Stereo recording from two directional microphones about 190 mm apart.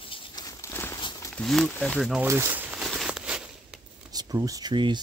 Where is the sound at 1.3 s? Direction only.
Centre (ahead or behind).